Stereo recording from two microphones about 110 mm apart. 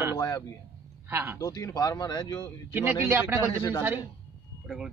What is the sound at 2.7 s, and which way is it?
Speech, 15° right (ahead or behind).